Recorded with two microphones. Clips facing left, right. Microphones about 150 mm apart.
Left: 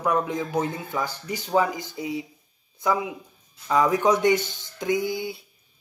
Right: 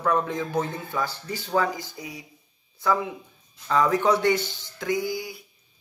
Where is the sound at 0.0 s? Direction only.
15° left (ahead or behind).